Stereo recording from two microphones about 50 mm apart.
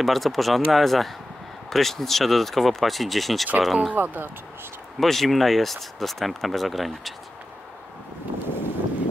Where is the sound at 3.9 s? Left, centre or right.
Right.